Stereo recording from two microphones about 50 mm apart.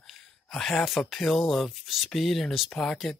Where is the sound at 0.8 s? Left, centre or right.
Centre.